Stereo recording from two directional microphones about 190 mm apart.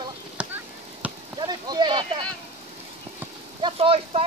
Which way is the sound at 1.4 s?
20° right (ahead or behind).